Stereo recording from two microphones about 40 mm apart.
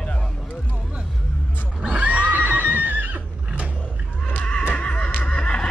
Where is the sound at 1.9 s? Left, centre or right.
Right.